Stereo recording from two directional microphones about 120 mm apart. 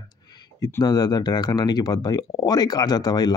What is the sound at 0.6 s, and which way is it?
Speech, 35° left (ahead or behind).